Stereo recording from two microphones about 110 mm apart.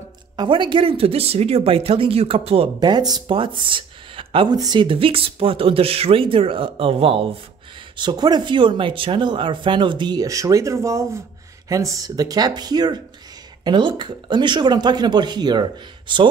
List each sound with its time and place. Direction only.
0.4 s speech: 45° right (ahead or behind)
2.8 s speech: 40° right (ahead or behind)
3.3 s speech: 50° right (ahead or behind)
4.5 s speech: 40° right (ahead or behind); by 7.2 s 55° right (ahead or behind)
7.9 s speech: 45° right (ahead or behind)